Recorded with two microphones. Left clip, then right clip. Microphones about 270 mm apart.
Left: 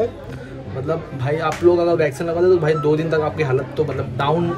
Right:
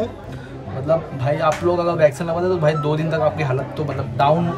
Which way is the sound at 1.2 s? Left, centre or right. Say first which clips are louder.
Right 1 dB; centre.